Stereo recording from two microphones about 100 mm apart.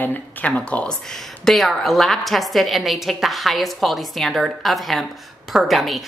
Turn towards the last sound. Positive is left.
turn(degrees=0)  # may be behind; listen again after turning